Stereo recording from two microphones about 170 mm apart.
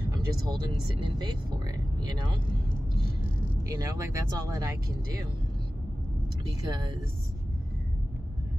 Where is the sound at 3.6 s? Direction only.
20° right (ahead or behind).